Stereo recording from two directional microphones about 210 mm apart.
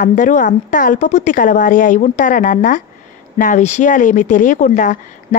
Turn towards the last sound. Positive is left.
turn(degrees=40)  # may be behind; listen again after turning